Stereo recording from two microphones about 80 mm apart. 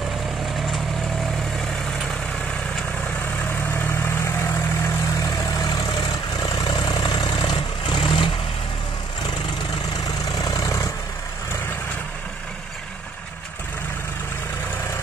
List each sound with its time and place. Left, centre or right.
0.6 s vehicle: centre
3.2 s vehicle: left
5.2 s vehicle: left
10.3 s vehicle: left